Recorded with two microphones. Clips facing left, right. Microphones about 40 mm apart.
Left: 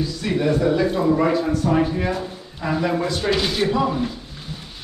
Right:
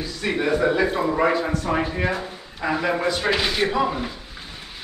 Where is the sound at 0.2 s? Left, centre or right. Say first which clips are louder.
Even; right.